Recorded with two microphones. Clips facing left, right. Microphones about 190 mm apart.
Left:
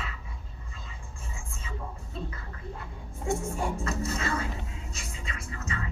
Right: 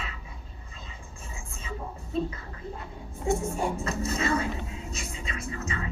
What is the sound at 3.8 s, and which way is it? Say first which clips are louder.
Music: right 2 dB; 20° right (ahead or behind).